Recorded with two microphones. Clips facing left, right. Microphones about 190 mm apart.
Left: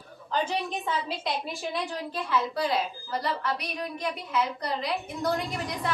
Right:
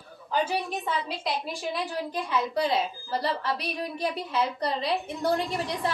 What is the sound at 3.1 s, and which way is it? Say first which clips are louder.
A woman's voice: right 1 dB; 30° right (ahead or behind).